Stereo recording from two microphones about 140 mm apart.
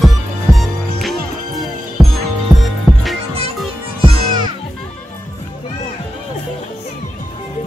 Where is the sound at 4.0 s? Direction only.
35° right (ahead or behind).